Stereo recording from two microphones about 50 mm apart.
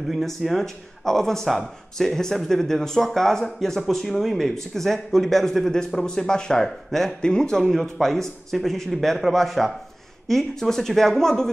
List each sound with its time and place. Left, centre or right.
0.4 s speech: centre